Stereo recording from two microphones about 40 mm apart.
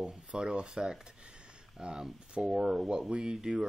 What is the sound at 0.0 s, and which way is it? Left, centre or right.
Speech, right.